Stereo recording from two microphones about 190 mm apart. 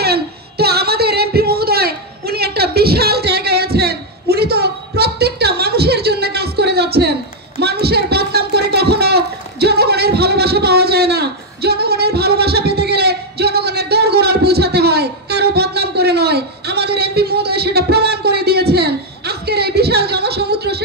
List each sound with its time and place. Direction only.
0.0 s singing: 55° right (ahead or behind)